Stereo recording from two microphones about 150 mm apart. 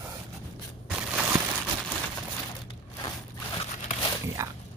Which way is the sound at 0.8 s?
5° right (ahead or behind).